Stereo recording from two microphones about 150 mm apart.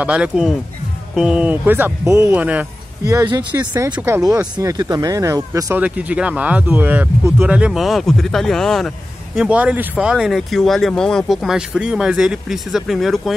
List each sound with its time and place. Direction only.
0.0 s speech: 5° right (ahead or behind)
5.9 s speech: 10° right (ahead or behind)